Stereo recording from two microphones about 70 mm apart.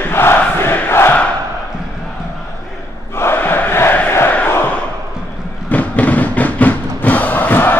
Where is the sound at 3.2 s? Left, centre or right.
Left.